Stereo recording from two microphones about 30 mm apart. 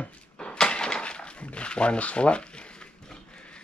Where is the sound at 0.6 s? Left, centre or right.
Left.